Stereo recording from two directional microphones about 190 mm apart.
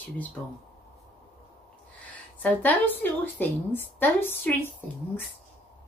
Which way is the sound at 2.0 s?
10° left (ahead or behind).